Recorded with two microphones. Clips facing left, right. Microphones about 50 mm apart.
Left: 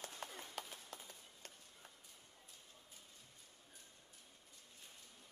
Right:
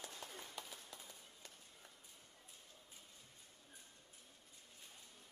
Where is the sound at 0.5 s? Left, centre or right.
Left.